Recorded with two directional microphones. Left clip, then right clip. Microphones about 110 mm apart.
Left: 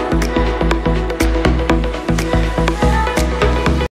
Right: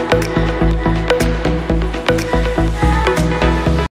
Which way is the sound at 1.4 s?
15° right (ahead or behind).